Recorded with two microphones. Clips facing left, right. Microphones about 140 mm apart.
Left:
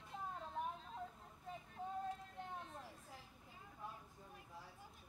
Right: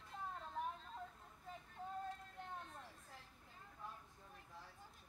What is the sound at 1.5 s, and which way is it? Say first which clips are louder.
Female singing: left 3 dB; centre (ahead or behind).